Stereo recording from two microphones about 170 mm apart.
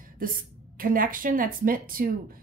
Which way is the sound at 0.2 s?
55° right (ahead or behind).